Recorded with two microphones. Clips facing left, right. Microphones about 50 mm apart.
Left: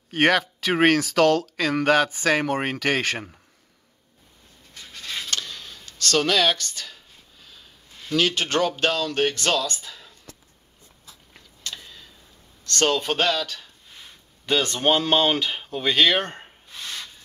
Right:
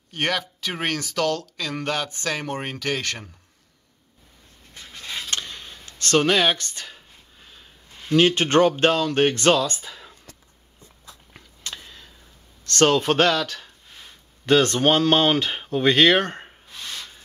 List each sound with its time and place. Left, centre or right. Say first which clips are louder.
0.1 s speech: left 6 dB; centre
5.3 s a sound: even; right
8.1 s speech: right 5 dB; right
9.7 s speech: right 1 dB; centre
11.3 s a sound: even; centre
12.7 s speech: right 4 dB; centre